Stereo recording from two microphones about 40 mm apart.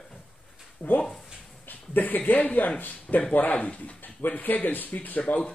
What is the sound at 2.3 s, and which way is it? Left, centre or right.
Speech, left.